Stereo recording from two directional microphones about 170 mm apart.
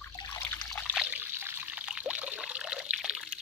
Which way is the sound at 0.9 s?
10° right (ahead or behind).